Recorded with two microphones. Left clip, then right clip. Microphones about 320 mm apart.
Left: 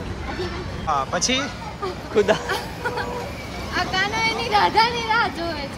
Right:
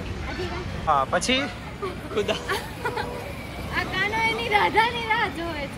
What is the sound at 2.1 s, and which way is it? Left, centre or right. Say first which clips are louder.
Speech: left 8 dB; left.